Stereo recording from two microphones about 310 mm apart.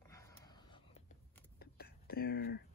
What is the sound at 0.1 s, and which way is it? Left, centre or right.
Gasp, centre.